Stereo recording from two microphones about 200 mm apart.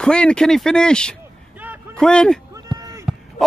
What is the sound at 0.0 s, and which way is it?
A man's voice, 5° left (ahead or behind).